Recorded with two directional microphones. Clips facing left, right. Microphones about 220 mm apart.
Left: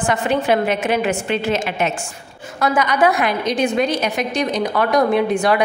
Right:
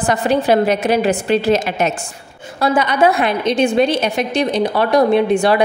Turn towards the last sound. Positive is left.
turn(degrees=-30)  # may be behind; listen again after turning